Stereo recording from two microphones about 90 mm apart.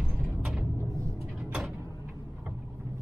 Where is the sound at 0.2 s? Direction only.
5° right (ahead or behind).